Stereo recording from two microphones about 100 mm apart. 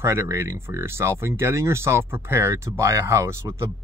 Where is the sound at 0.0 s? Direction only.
30° right (ahead or behind).